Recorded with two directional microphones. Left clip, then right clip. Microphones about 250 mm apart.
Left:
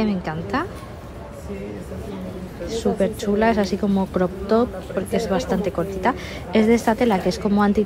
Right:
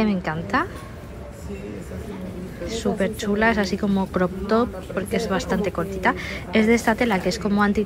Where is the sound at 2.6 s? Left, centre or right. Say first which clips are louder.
Left 3 dB; centre.